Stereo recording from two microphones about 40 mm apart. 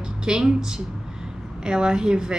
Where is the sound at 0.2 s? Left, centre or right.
Centre.